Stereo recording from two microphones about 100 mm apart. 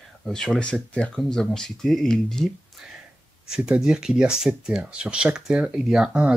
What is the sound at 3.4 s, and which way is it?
Speech, 5° right (ahead or behind).